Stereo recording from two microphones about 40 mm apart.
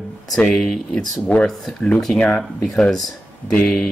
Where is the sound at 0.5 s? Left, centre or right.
Centre.